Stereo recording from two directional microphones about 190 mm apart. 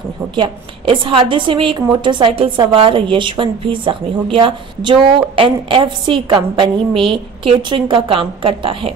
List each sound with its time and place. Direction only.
0.4 s a woman's voice: 25° right (ahead or behind)